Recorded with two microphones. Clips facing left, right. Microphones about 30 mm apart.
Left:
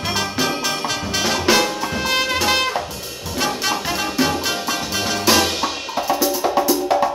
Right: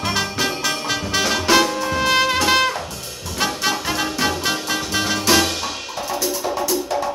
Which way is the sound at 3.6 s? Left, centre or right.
Centre.